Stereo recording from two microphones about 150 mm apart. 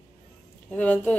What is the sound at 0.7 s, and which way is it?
Speech, 10° left (ahead or behind).